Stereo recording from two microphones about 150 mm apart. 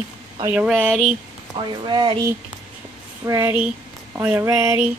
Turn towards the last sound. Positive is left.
turn(degrees=-10)  # may be behind; listen again after turning